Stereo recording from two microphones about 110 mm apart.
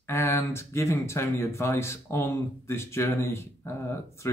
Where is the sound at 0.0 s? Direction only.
25° left (ahead or behind).